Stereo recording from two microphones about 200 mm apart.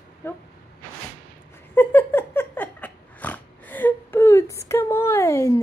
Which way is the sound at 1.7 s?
10° left (ahead or behind).